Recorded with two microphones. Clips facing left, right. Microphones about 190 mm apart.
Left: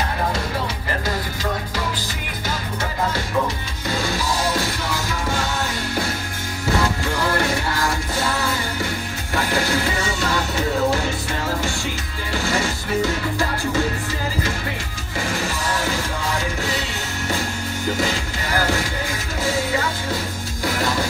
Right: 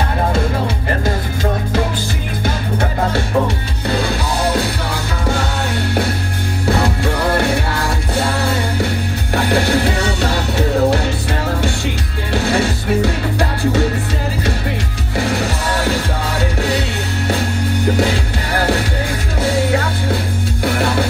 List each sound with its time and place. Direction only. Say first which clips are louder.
1.0 s music: right 5 dB; 55° right (ahead or behind)
6.8 s music: right 4 dB; 65° right (ahead or behind)
12.3 s music: right 6 dB; 65° right (ahead or behind)
15.2 s music: right 4 dB; 65° right (ahead or behind)
17.9 s music: right 6 dB; 65° right (ahead or behind)